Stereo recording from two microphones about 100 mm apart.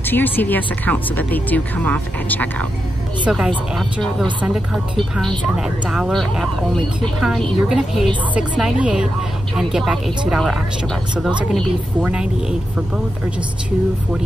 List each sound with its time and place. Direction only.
0.0 s speech: 20° left (ahead or behind)
3.3 s a woman's voice: 5° right (ahead or behind)